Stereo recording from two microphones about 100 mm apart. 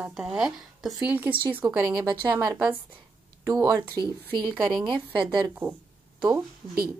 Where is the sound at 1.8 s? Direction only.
40° right (ahead or behind).